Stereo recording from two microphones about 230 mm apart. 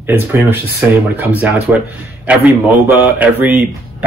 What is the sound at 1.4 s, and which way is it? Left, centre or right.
A man's voice, centre.